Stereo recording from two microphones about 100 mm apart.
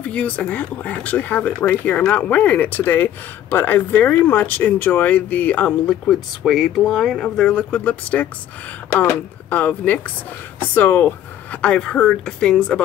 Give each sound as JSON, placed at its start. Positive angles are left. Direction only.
{"t": 0.0, "sound": "speech", "side_deg": 10}